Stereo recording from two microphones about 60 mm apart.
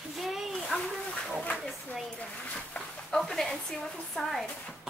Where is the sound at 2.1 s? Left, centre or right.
Centre.